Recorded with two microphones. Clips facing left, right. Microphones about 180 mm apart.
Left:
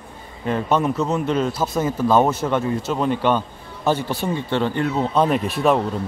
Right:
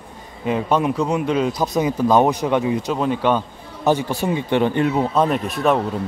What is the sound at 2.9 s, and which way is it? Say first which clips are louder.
A man's voice: left 1 dB; 5° right (ahead or behind).